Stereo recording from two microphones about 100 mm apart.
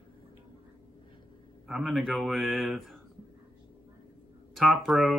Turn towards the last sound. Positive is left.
turn(degrees=0)  # may be behind; listen again after turning